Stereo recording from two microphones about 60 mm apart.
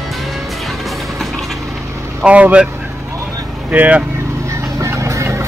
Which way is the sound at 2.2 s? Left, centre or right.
Right.